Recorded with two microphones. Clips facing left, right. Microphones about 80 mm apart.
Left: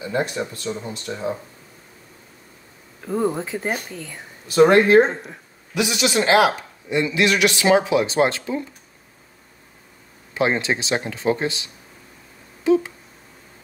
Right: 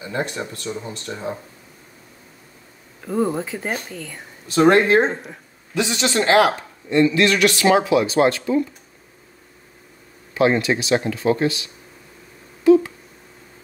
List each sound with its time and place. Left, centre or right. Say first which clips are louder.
0.0 s speech: left 2 dB; centre
3.1 s speech: right 1 dB; centre
5.8 s a man's voice: even; centre
10.3 s a man's voice: right 3 dB; left